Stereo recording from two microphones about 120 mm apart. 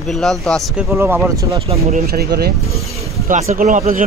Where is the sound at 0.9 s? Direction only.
20° right (ahead or behind).